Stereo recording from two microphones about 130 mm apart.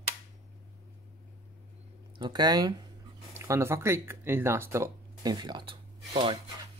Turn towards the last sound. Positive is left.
turn(degrees=-40)  # may be behind; listen again after turning